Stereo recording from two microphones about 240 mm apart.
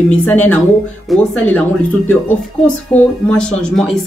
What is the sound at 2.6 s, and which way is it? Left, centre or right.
A woman's voice, centre.